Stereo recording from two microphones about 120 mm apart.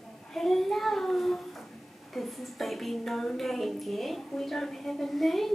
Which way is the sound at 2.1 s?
Centre (ahead or behind).